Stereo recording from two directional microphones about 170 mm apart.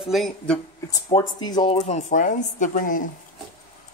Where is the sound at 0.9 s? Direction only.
25° left (ahead or behind).